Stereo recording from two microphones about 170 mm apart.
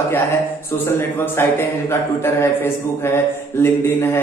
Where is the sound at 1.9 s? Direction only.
15° left (ahead or behind).